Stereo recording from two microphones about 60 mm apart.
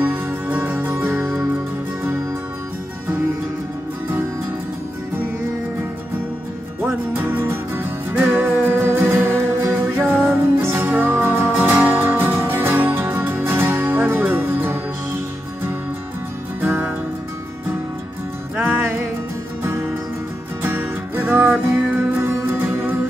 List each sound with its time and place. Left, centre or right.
0.0 s music: right
6.8 s music: right
19.6 s music: right